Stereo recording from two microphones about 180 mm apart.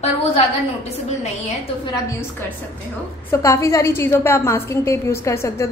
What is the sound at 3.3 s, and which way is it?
A woman's voice, 15° left (ahead or behind).